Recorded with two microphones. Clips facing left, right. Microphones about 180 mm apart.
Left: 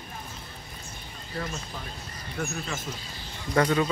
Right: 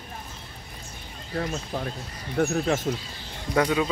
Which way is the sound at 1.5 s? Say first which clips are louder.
Right 7 dB; 55° right (ahead or behind).